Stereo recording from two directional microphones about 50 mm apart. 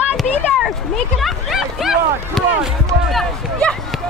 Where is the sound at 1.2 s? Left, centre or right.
Centre.